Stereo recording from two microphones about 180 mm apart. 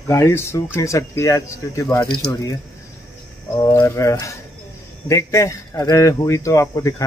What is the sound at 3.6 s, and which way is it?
Speech, 15° left (ahead or behind).